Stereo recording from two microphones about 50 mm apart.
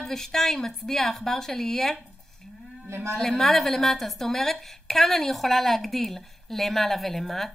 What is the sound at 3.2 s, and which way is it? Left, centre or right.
A woman's voice, centre.